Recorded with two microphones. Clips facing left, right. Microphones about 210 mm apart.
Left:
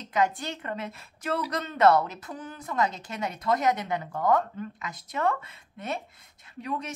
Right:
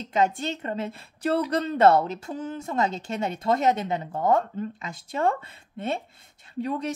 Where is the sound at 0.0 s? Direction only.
25° right (ahead or behind).